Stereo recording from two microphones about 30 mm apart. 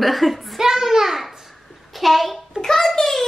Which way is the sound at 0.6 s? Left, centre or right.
Centre.